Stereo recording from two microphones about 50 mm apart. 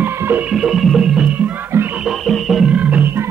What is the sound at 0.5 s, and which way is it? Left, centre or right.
Music, centre.